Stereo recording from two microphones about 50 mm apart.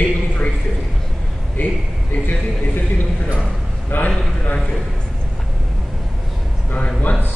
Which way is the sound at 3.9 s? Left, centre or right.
Left.